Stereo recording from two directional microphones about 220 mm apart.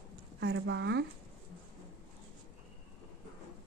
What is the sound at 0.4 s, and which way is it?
Speech, 50° right (ahead or behind).